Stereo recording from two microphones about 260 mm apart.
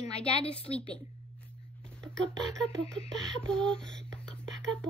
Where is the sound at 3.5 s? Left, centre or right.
Centre.